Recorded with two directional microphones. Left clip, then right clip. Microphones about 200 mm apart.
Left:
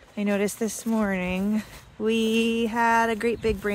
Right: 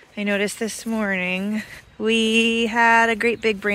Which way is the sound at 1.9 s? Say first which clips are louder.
Right 5 dB; 15° right (ahead or behind).